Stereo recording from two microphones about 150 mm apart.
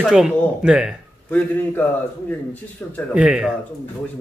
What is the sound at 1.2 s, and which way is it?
Speech, 10° left (ahead or behind).